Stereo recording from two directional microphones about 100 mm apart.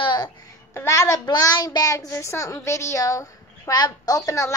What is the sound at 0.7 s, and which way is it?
A woman's voice, 30° left (ahead or behind).